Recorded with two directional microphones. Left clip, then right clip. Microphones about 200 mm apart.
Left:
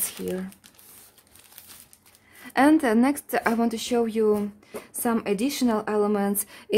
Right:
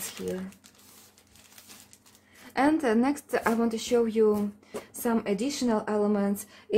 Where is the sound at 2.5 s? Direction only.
45° left (ahead or behind).